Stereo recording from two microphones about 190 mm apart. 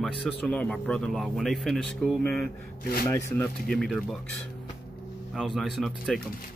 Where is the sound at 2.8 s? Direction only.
50° left (ahead or behind).